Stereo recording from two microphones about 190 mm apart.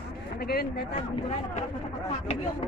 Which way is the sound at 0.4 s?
55° left (ahead or behind).